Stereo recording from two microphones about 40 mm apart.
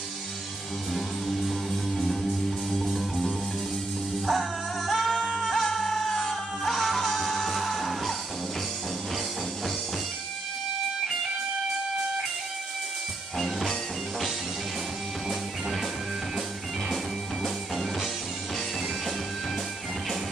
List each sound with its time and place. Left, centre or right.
0.9 s music: centre